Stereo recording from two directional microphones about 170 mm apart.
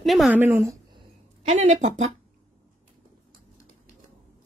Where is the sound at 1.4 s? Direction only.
45° right (ahead or behind).